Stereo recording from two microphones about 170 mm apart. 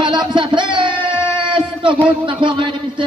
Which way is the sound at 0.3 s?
30° right (ahead or behind).